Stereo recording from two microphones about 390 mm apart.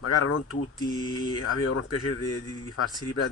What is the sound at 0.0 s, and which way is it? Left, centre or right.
Speech, left.